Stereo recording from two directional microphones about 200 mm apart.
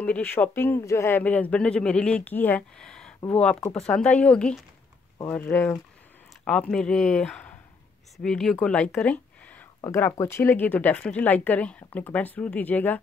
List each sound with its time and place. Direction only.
0.0 s speech: 10° left (ahead or behind)